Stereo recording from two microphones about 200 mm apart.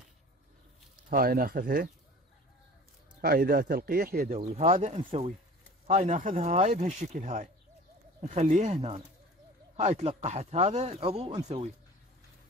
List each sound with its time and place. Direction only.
1.1 s speech: 45° right (ahead or behind)
3.2 s speech: 50° right (ahead or behind)
4.3 s speech: 35° right (ahead or behind)